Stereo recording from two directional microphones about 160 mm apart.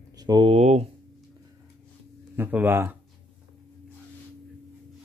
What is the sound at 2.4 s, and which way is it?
Speech, 10° right (ahead or behind).